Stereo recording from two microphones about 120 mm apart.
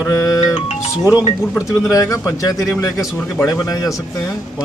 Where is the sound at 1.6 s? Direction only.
25° left (ahead or behind).